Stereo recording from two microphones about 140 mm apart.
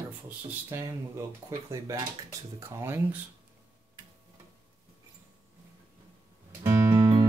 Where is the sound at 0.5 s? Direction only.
20° right (ahead or behind).